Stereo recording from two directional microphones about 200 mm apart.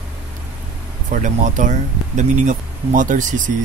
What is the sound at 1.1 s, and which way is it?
Speech, 40° right (ahead or behind).